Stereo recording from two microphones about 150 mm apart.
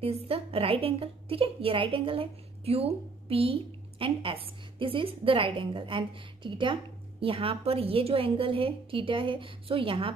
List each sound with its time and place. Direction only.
0.0 s a woman's voice: 40° right (ahead or behind)